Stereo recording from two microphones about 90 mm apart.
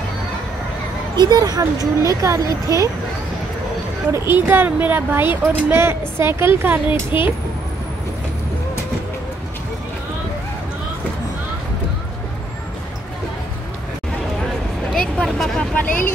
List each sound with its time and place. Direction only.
1.1 s speech: 50° right (ahead or behind)
4.1 s speech: 25° right (ahead or behind)
15.0 s vehicle: 5° left (ahead or behind)